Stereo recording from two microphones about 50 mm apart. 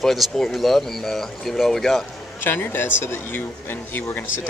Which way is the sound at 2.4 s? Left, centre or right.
Left.